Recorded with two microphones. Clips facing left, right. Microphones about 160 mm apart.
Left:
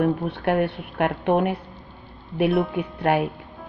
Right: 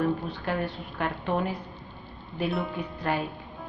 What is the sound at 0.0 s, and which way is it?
Speech, 65° left (ahead or behind).